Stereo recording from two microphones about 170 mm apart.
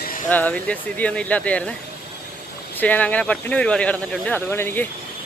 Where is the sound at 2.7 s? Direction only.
10° left (ahead or behind).